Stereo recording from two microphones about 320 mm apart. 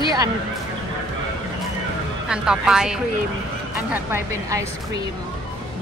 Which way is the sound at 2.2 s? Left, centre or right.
Centre.